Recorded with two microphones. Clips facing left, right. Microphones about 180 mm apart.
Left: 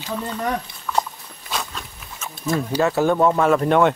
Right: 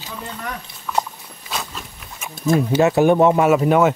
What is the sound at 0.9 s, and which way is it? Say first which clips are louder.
Horse: even; 10° right (ahead or behind).